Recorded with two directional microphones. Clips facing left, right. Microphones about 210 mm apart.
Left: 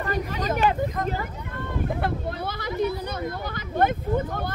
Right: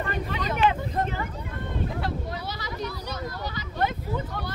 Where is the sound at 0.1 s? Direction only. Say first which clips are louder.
Left 3 dB; 45° left (ahead or behind).